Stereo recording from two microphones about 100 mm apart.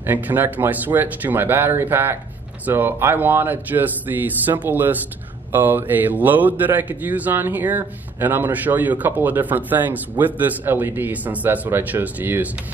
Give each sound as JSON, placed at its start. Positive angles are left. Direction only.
{"t": 0.0, "sound": "a man's voice", "side_deg": -20}